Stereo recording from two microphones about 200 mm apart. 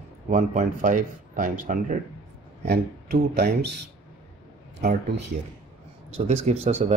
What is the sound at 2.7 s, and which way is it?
Speech, 55° right (ahead or behind).